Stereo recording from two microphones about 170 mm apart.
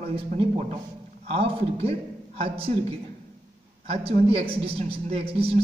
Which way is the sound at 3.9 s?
35° right (ahead or behind).